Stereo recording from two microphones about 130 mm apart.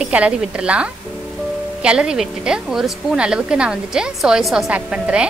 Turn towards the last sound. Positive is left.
turn(degrees=-10)  # may be behind; listen again after turning